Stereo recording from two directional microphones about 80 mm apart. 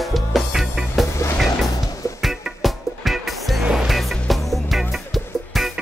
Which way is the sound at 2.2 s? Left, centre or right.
Centre.